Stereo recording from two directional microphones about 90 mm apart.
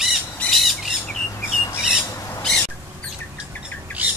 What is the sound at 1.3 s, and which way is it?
Chirp, 20° left (ahead or behind).